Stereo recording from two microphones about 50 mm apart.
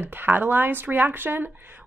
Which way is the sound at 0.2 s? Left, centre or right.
Right.